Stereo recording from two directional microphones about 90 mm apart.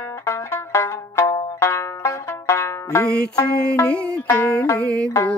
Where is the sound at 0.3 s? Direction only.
35° left (ahead or behind).